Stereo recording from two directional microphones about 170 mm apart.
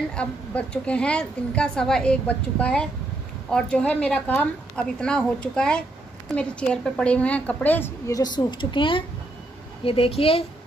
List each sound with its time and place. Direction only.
0.1 s a woman's voice: 5° left (ahead or behind)
8.2 s a woman's voice: 25° left (ahead or behind)